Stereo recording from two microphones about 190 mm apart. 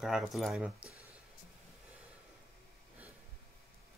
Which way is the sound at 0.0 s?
Centre (ahead or behind).